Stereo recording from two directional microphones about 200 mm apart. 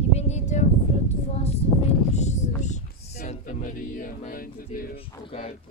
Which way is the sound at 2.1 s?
35° left (ahead or behind).